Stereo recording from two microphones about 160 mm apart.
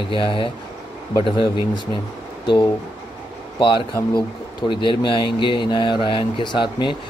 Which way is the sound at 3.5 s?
30° left (ahead or behind).